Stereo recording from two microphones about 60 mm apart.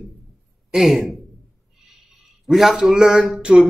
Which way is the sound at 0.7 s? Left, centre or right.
Centre.